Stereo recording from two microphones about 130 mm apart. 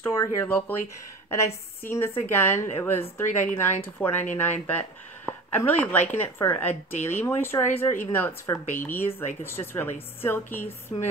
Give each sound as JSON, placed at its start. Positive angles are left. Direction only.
{"t": 0.0, "sound": "a woman's voice", "side_deg": 20}